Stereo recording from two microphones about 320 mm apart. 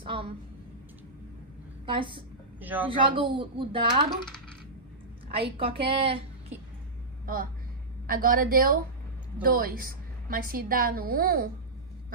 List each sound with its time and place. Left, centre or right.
0.0 s a sound: centre
1.9 s a woman's voice: centre
5.3 s speech: centre
8.1 s a woman's voice: right